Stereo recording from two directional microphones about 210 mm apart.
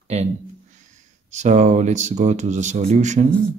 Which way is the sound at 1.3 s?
35° right (ahead or behind).